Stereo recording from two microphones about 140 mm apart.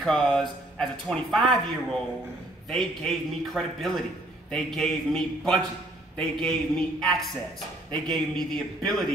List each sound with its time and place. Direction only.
0.0 s speech: 5° left (ahead or behind)
2.7 s speech: 5° left (ahead or behind)